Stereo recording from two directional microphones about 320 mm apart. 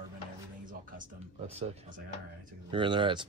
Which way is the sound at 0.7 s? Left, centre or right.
Right.